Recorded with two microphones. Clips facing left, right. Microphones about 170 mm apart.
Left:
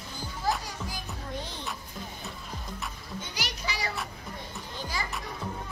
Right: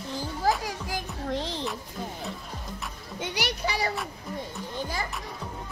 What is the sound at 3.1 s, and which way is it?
Children playing, 70° right (ahead or behind).